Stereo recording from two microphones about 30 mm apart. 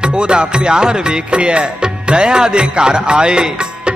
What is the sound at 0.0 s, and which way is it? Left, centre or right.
Music, right.